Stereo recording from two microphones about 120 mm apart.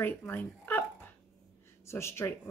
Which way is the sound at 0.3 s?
15° left (ahead or behind).